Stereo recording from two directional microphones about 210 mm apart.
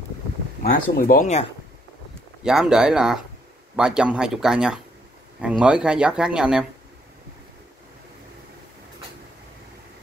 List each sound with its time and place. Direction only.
0.7 s speech: 45° left (ahead or behind)
2.4 s speech: 5° right (ahead or behind)